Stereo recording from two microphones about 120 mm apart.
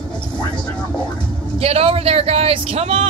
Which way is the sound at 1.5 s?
55° right (ahead or behind).